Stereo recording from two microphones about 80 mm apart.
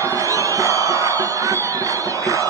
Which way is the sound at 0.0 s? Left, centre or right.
Right.